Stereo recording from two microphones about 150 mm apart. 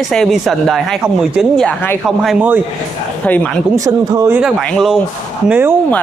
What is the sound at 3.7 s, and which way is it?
Speech, 20° right (ahead or behind).